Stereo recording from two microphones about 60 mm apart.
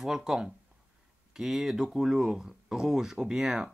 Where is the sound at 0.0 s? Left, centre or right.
Centre.